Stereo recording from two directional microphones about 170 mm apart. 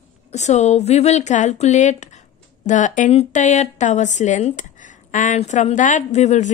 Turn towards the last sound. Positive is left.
turn(degrees=45)  # may be behind; listen again after turning